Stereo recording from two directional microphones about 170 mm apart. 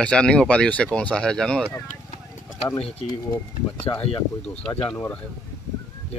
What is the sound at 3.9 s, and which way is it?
Speech, 25° left (ahead or behind).